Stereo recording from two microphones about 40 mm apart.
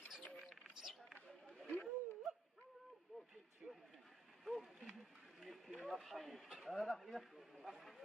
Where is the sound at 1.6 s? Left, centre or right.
Left.